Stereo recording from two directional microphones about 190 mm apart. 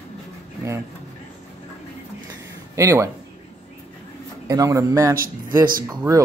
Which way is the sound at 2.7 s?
15° right (ahead or behind).